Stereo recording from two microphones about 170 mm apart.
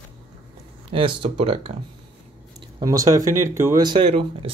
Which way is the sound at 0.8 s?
30° right (ahead or behind).